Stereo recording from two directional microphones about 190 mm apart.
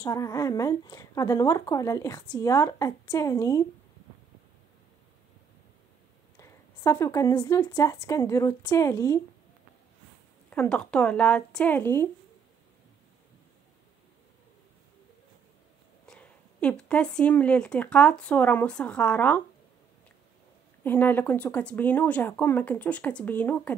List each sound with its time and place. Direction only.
0.0 s speech: 15° left (ahead or behind)
6.3 s speech: 15° left (ahead or behind)
10.5 s speech: 5° left (ahead or behind)
16.1 s speech: 5° left (ahead or behind)
20.8 s speech: 10° left (ahead or behind)